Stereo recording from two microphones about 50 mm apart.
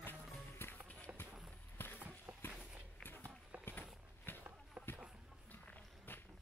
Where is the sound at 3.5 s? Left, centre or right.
Right.